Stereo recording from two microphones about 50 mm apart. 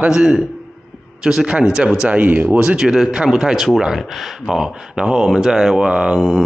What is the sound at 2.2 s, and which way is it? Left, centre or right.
Speech, right.